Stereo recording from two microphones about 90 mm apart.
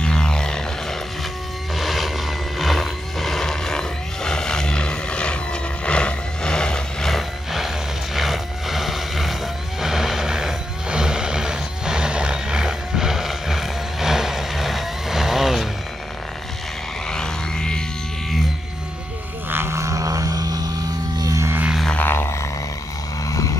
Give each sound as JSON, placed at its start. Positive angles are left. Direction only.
{"t": 0.0, "sound": "music", "side_deg": 10}
{"t": 1.8, "sound": "a sound", "side_deg": 0}
{"t": 17.1, "sound": "frog", "side_deg": 5}
{"t": 19.5, "sound": "vehicle", "side_deg": -30}
{"t": 21.2, "sound": "music", "side_deg": -40}
{"t": 21.8, "sound": "a sound", "side_deg": 20}